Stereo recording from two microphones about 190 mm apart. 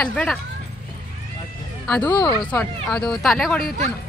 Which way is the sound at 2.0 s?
25° left (ahead or behind).